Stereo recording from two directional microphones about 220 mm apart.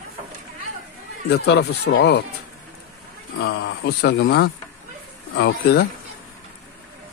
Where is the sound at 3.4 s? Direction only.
45° left (ahead or behind).